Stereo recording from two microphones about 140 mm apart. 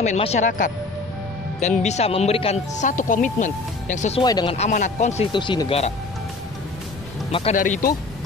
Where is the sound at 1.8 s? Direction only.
50° left (ahead or behind).